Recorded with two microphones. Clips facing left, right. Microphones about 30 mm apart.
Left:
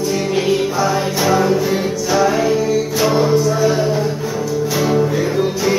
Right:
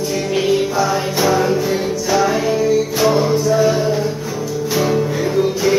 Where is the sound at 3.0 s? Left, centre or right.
Centre.